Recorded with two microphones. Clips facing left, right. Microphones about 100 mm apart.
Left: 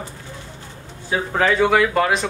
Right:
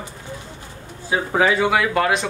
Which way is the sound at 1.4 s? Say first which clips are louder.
Left 2 dB; 5° right (ahead or behind).